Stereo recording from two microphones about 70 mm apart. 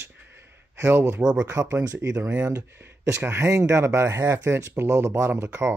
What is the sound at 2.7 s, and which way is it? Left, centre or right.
Speech, right.